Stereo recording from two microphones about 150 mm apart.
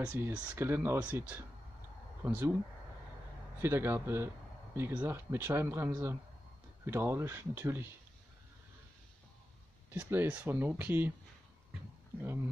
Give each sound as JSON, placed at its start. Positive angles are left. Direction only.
{"t": 0.0, "sound": "speech", "side_deg": -10}
{"t": 3.6, "sound": "speech", "side_deg": -15}
{"t": 9.9, "sound": "speech", "side_deg": -15}